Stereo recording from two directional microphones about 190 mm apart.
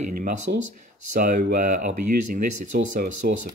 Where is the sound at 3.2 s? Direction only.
55° right (ahead or behind).